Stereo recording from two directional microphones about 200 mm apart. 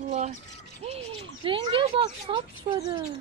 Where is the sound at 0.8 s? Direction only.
30° right (ahead or behind).